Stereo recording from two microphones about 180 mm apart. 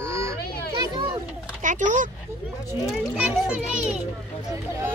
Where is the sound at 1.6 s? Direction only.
45° right (ahead or behind).